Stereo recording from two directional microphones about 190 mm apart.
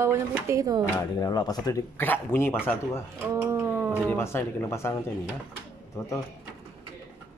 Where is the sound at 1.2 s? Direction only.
20° left (ahead or behind).